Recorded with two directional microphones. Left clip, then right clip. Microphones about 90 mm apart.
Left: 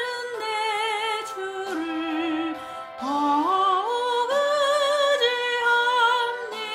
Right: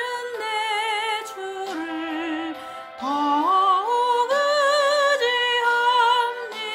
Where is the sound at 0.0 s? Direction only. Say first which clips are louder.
Right 1 dB; 50° right (ahead or behind).